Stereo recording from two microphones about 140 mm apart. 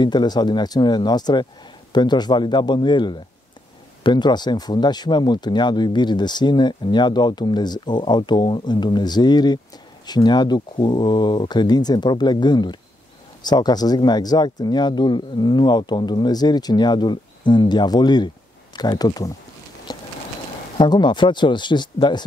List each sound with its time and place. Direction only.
0.0 s speech: 30° left (ahead or behind)
19.9 s clip-clop: 30° left (ahead or behind)
20.7 s speech: 35° left (ahead or behind)